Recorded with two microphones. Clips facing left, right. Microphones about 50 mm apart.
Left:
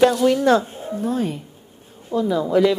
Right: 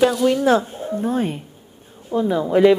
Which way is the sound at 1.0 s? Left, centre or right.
Right.